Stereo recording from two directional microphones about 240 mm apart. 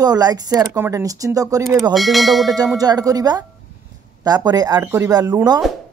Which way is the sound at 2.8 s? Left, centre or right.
Centre.